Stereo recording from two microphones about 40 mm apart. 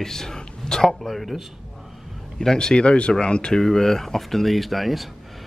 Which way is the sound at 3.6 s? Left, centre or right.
Centre.